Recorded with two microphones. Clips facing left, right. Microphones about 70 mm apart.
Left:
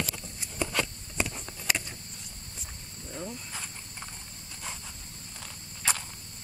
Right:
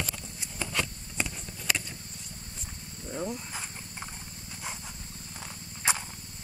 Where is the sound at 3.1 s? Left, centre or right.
Centre.